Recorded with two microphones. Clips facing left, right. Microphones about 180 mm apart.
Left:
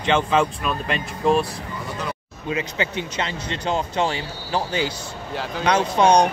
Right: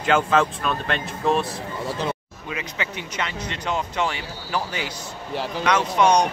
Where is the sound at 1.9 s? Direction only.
30° right (ahead or behind).